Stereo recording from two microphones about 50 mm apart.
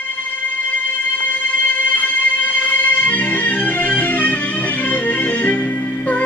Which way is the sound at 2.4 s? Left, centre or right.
Left.